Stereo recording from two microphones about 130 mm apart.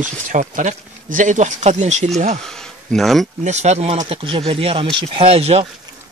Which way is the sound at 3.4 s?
60° right (ahead or behind).